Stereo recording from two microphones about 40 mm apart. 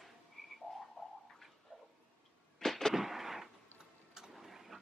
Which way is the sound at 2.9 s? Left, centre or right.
Centre.